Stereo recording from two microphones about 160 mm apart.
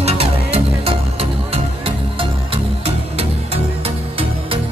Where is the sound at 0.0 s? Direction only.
40° right (ahead or behind).